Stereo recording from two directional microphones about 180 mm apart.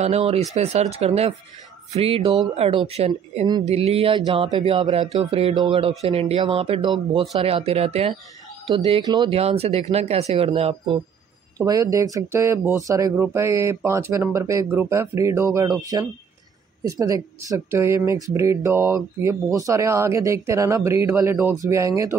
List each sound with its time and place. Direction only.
0.0 s speech: 35° right (ahead or behind)
3.6 s speech: 35° right (ahead or behind)
11.5 s speech: 20° right (ahead or behind)